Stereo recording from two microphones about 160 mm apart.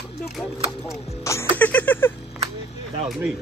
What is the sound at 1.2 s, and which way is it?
Music, 15° left (ahead or behind).